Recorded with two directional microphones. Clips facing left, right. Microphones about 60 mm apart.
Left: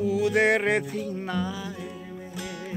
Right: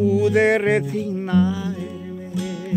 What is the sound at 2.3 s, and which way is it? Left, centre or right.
Music, left.